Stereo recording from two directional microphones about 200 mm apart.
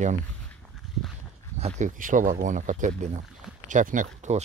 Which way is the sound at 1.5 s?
35° right (ahead or behind).